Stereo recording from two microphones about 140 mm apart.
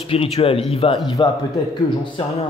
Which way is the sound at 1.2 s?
35° left (ahead or behind).